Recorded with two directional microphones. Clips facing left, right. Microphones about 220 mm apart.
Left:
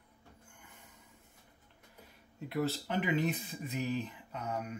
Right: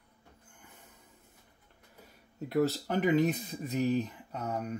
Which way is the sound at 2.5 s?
40° right (ahead or behind).